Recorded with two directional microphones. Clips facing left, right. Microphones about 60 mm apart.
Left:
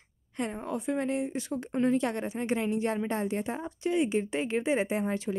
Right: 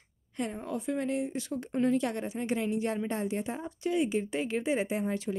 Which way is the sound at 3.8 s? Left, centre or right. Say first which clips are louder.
Left 1 dB; left.